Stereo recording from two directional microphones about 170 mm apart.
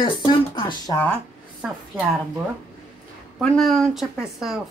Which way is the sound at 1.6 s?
10° right (ahead or behind).